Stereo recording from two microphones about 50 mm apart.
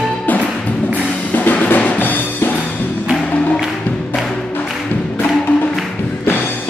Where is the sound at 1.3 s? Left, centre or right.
Left.